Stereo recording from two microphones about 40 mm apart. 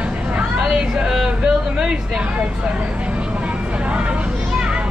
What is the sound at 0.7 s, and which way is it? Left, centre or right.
Speech, centre.